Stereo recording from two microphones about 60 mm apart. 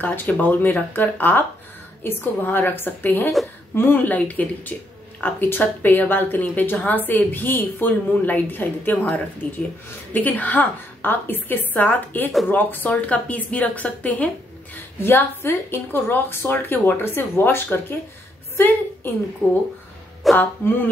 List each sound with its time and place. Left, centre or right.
0.0 s a woman's voice: left
15.0 s a woman's voice: left
19.0 s a woman's voice: left